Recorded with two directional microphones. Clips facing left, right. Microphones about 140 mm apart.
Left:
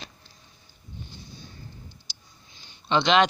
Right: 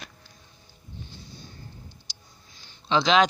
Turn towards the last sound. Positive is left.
turn(degrees=0)  # may be behind; listen again after turning